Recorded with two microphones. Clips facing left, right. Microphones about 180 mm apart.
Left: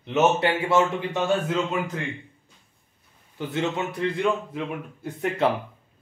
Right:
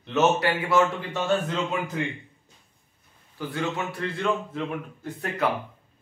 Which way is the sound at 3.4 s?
20° left (ahead or behind).